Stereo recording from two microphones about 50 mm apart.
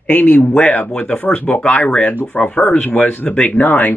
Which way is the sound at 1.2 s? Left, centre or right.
Left.